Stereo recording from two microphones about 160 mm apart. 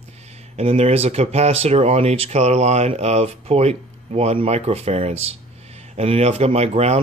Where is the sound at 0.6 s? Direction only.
40° right (ahead or behind).